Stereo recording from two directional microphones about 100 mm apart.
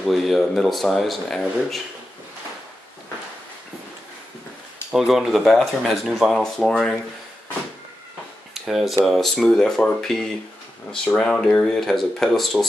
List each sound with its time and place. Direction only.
0.0 s speech: centre (ahead or behind)
4.9 s speech: centre (ahead or behind)
8.5 s speech: centre (ahead or behind)